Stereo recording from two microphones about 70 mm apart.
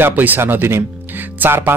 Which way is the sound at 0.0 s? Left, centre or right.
Right.